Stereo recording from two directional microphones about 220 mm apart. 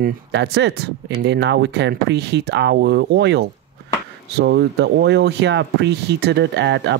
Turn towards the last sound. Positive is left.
turn(degrees=-50)  # may be behind; listen again after turning